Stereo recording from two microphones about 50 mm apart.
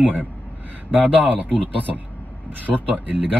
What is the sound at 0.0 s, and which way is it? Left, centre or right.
Speech, right.